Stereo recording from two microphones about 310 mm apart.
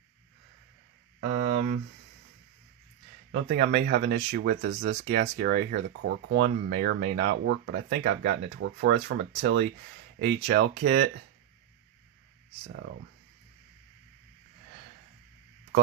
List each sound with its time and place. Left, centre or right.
1.2 s speech: right
3.5 s speech: right